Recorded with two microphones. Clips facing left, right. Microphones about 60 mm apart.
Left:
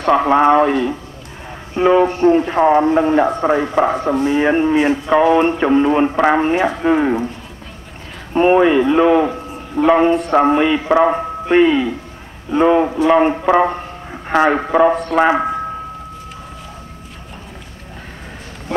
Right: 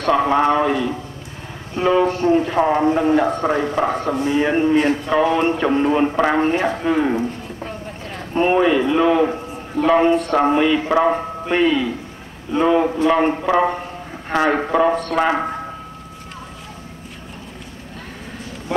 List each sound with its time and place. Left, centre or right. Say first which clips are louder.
0.0 s speech: left 4 dB; left
1.8 s speech: left 4 dB; left
6.3 s speech: left 3 dB; left
8.4 s a man's voice: left 4 dB; centre